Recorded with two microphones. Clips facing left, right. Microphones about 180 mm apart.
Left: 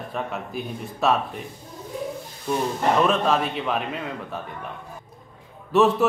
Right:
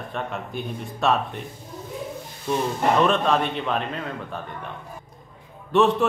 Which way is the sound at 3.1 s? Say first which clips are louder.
Even; centre (ahead or behind).